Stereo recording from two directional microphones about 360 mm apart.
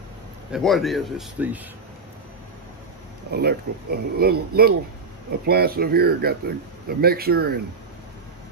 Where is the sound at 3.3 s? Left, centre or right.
Right.